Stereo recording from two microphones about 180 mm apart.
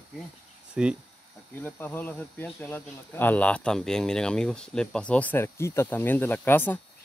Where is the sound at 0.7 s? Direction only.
5° right (ahead or behind).